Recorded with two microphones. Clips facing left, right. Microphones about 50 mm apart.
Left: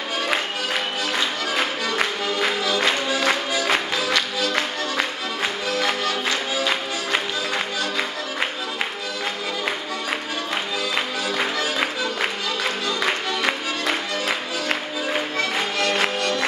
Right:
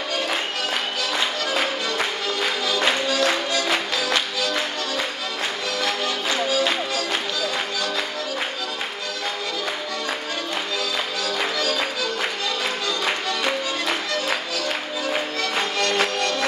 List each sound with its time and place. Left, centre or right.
2.7 s music: centre
11.2 s music: left
15.8 s music: centre